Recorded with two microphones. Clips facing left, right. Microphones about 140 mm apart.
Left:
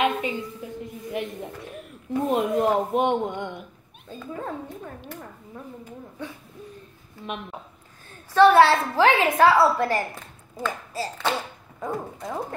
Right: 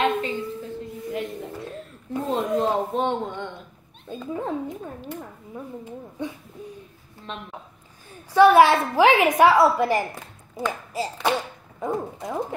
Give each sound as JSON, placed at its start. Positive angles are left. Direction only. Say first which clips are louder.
{"t": 0.0, "sound": "a sound", "louder": "right 1 dB", "side_deg": 15}
{"t": 2.2, "sound": "speech", "louder": "left 1 dB", "side_deg": 15}
{"t": 4.1, "sound": "speech", "louder": "right 5 dB", "side_deg": -20}
{"t": 8.3, "sound": "a woman's voice", "louder": "right 1 dB", "side_deg": -15}
{"t": 10.5, "sound": "a sound", "louder": "right 2 dB", "side_deg": -15}
{"t": 11.8, "sound": "speech", "louder": "right 3 dB", "side_deg": -20}